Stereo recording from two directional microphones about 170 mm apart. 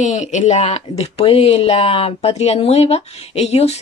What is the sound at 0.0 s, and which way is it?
Speech, 45° left (ahead or behind).